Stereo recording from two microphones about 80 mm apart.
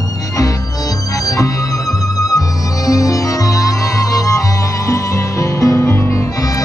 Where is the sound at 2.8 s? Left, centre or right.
Left.